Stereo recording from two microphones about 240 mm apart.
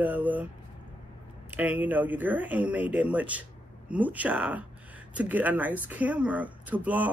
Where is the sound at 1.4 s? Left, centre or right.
Centre.